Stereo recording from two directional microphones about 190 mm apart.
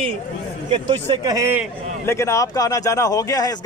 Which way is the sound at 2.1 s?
15° left (ahead or behind).